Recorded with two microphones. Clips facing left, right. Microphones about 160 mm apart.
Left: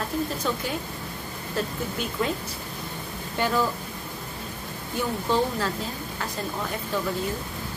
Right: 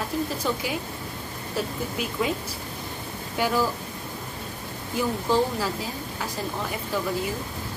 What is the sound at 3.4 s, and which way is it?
Speech, 10° right (ahead or behind).